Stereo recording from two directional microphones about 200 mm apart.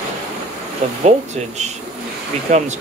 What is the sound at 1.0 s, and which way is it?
Speech, 35° right (ahead or behind).